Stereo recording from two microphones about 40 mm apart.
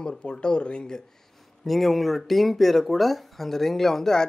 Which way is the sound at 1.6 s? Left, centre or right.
Centre.